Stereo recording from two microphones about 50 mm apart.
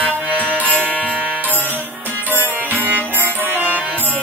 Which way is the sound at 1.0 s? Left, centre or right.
Centre.